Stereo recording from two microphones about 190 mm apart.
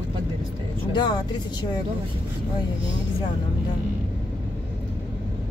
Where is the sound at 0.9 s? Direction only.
20° left (ahead or behind).